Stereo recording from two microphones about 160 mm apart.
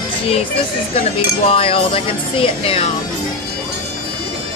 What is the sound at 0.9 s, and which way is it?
Speech, 35° left (ahead or behind).